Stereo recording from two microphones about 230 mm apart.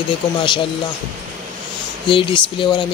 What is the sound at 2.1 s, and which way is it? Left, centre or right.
Speech, left.